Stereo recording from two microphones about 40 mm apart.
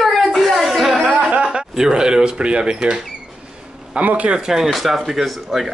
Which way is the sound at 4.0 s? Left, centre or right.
Right.